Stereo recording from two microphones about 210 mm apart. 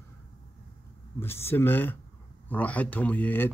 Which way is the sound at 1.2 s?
10° left (ahead or behind).